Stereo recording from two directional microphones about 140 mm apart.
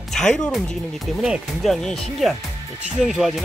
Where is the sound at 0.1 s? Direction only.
5° left (ahead or behind).